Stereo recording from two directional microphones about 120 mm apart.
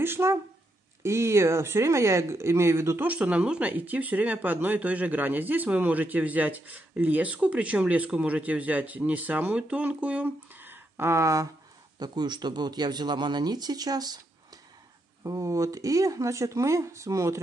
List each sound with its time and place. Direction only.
0.0 s speech: 20° right (ahead or behind)
12.0 s speech: 35° right (ahead or behind)
15.2 s speech: 30° right (ahead or behind)